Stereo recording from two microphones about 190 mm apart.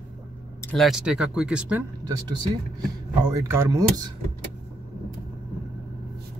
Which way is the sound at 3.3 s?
15° right (ahead or behind).